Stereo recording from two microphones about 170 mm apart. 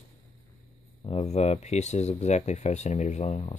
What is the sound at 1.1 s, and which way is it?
Speech, 40° left (ahead or behind).